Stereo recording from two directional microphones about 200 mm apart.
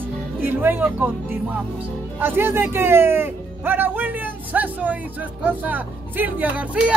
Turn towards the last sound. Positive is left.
turn(degrees=-10)  # may be behind; listen again after turning